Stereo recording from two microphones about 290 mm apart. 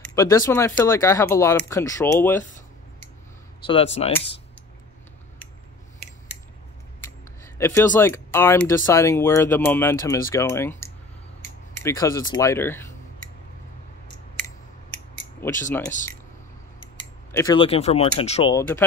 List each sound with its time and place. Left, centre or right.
0.0 s speech: centre
3.6 s speech: centre
7.0 s speech: centre
15.4 s speech: centre
17.3 s speech: centre